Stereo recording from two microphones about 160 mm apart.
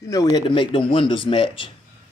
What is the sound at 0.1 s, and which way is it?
A man's voice, 20° left (ahead or behind).